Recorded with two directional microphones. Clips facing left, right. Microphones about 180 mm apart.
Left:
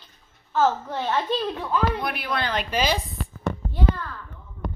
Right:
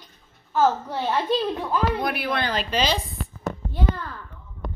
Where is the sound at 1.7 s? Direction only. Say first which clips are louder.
Left 1 dB; 40° right (ahead or behind).